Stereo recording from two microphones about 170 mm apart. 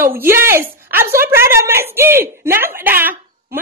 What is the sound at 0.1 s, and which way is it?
A woman's voice, 15° right (ahead or behind).